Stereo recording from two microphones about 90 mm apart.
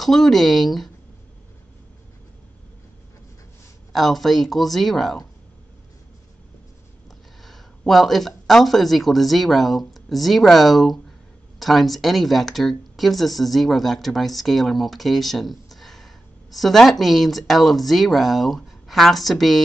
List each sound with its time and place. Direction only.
0.0 s speech: centre (ahead or behind)
3.9 s speech: centre (ahead or behind)
7.4 s speech: centre (ahead or behind)